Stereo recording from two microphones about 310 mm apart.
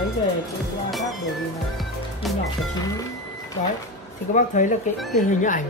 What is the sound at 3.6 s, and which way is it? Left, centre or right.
Speech, left.